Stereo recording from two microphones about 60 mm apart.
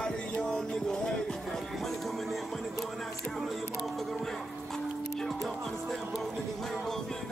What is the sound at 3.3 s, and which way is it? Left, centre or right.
Speech, centre.